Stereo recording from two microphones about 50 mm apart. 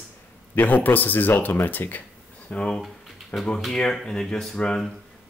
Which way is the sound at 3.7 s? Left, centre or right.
Centre.